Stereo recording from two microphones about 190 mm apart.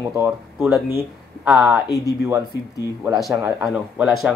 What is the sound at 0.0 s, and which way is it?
Speech, 15° right (ahead or behind).